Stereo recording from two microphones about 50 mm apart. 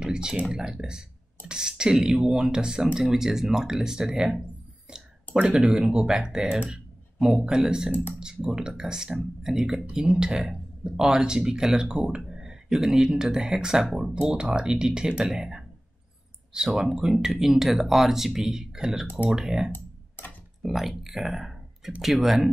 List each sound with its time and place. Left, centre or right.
0.0 s typing: centre
0.5 s speech: centre
14.3 s speech: centre
19.7 s a sound: left
20.6 s speech: centre